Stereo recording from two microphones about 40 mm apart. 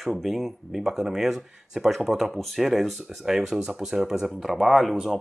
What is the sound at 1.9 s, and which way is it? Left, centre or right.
Speech, centre.